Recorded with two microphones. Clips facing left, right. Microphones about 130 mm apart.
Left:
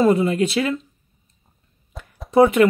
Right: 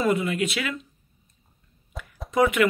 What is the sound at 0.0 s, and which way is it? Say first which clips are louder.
Speech: left 7 dB; 30° left (ahead or behind).